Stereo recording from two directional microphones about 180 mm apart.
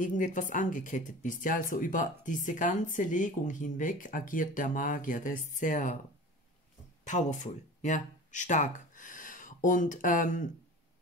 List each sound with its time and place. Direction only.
0.0 s speech: 45° left (ahead or behind)
7.1 s speech: 45° left (ahead or behind)